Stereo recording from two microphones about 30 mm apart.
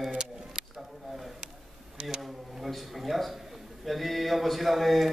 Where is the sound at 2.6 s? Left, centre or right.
Centre.